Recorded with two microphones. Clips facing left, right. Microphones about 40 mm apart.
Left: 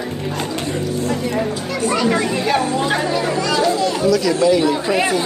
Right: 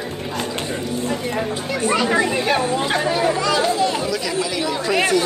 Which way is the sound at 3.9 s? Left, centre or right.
Centre.